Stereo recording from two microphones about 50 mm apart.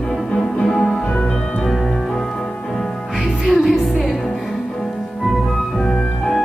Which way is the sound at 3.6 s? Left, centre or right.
Centre.